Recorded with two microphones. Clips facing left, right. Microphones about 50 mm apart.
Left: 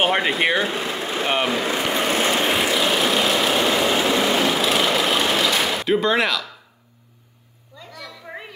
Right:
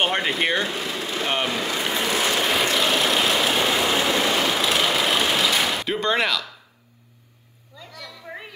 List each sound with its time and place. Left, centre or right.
0.0 s speech: centre
0.7 s vehicle: left
1.3 s speech: centre
1.7 s vehicle: left
2.6 s vehicle: centre
7.7 s a sound: centre